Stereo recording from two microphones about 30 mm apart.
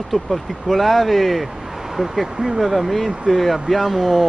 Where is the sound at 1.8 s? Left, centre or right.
Centre.